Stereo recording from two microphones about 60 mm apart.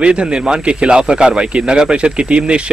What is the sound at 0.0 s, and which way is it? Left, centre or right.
Speech, centre.